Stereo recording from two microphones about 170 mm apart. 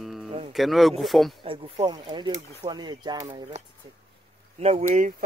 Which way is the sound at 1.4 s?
30° right (ahead or behind).